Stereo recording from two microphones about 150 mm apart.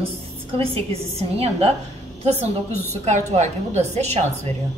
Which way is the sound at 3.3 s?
50° right (ahead or behind).